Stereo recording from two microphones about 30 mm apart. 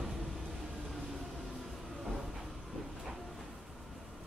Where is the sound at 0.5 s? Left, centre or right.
Centre.